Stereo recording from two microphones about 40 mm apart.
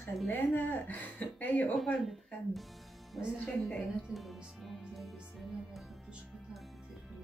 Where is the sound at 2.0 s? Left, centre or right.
Centre.